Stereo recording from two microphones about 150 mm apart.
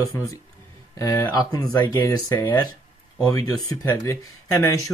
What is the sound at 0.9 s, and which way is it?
Speech, 20° left (ahead or behind).